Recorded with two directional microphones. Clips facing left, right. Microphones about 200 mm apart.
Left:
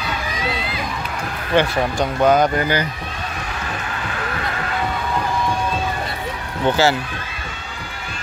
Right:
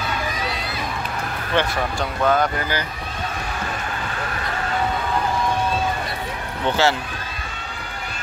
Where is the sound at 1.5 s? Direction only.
20° left (ahead or behind).